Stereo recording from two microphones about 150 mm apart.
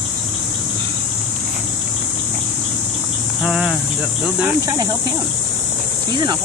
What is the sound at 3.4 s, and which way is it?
Speech, 5° right (ahead or behind).